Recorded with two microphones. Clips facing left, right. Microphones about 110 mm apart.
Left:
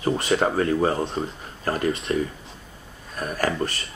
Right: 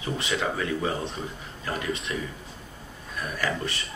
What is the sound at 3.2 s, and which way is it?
Speech, 45° left (ahead or behind).